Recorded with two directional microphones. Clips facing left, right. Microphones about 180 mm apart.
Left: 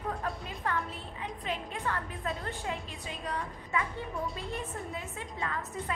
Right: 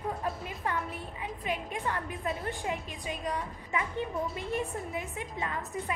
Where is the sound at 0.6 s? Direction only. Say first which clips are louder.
Even; 15° right (ahead or behind).